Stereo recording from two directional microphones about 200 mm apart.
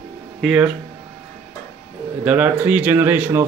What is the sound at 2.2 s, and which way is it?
Speech, 5° right (ahead or behind).